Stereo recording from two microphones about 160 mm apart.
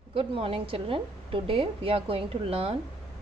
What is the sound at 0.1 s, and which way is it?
A woman's voice, 35° right (ahead or behind).